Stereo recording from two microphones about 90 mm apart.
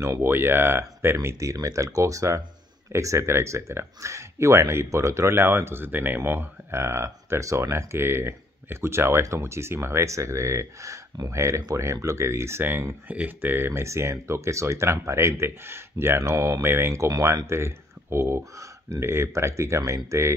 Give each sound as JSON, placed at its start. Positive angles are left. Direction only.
{"t": 0.0, "sound": "speech", "side_deg": -30}